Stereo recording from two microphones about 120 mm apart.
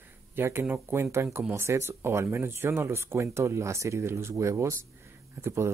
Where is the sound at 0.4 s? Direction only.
20° right (ahead or behind).